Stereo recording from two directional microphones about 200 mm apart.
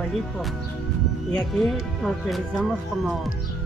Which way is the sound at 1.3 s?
Centre (ahead or behind).